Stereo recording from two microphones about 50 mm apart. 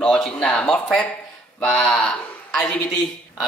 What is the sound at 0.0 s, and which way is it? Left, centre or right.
Speech, centre.